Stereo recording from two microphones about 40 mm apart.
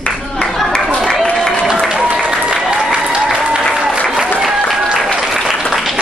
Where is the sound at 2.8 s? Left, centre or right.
Centre.